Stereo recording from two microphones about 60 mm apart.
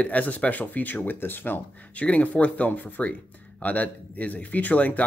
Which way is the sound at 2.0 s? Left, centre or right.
Left.